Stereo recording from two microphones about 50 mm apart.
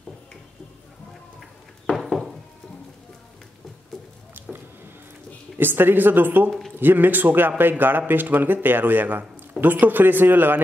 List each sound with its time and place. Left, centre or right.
2.0 s sheep: centre
5.6 s a man's voice: right